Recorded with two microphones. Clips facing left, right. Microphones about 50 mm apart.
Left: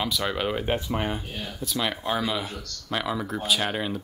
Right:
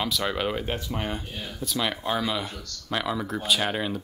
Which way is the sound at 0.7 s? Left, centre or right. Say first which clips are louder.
Left 4 dB; centre.